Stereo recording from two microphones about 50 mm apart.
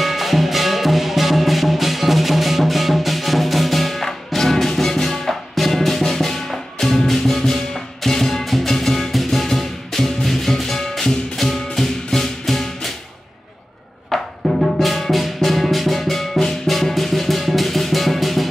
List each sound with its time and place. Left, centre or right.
0.0 s music: centre
14.1 s music: centre